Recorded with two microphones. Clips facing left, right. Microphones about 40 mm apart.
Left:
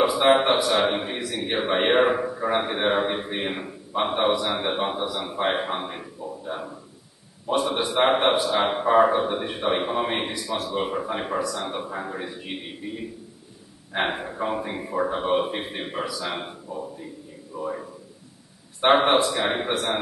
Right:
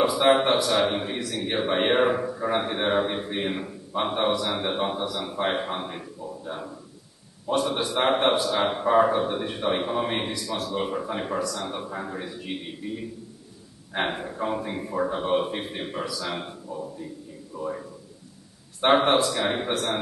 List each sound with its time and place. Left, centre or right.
0.0 s a man's voice: centre